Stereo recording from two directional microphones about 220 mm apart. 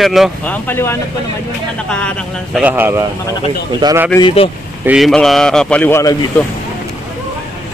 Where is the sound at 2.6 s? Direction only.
10° right (ahead or behind).